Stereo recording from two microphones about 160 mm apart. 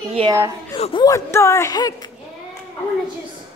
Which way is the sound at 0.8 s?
35° left (ahead or behind).